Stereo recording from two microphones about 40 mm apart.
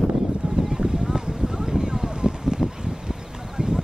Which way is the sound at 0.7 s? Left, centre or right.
Centre.